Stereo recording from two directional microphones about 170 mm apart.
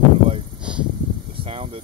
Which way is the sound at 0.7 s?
5° right (ahead or behind).